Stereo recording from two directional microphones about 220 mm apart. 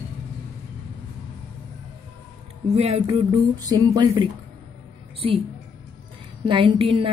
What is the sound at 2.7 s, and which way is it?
Speech, 25° right (ahead or behind).